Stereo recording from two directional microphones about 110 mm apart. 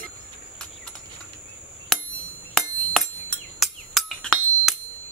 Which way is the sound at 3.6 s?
Centre (ahead or behind).